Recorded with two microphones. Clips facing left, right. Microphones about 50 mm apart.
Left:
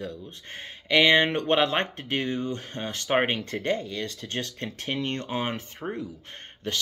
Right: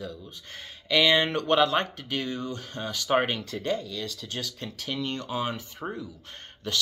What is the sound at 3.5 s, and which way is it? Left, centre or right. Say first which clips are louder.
Speech: left 2 dB; left.